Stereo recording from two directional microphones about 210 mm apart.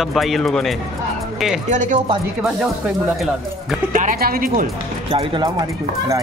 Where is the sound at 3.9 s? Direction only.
40° right (ahead or behind).